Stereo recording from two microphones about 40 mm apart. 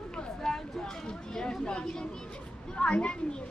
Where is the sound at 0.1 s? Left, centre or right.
Centre.